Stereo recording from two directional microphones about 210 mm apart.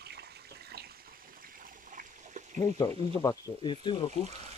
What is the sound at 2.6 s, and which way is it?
Speech, 15° left (ahead or behind).